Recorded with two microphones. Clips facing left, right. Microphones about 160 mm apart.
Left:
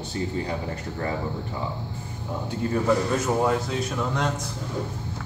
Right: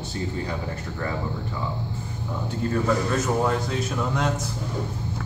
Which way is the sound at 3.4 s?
Centre (ahead or behind).